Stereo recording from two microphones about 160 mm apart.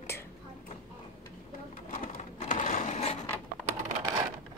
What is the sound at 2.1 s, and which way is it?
Sewing machine, 50° left (ahead or behind).